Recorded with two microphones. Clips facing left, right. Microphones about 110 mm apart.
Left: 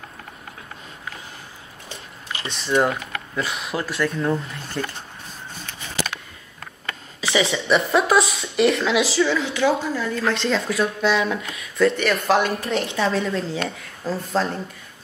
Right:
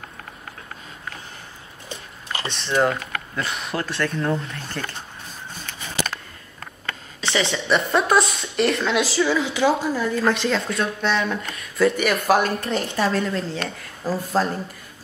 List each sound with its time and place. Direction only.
2.4 s speech: centre (ahead or behind)
7.2 s a sound: 5° left (ahead or behind)
7.5 s speech: centre (ahead or behind)
9.6 s speech: 15° right (ahead or behind)